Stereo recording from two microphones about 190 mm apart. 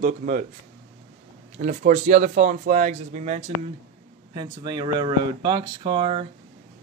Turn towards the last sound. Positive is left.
turn(degrees=-30)  # may be behind; listen again after turning